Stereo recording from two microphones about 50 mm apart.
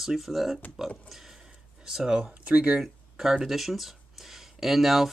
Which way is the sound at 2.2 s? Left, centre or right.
Right.